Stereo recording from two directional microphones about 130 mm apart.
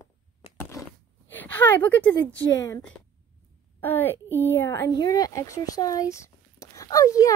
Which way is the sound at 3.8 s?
15° left (ahead or behind).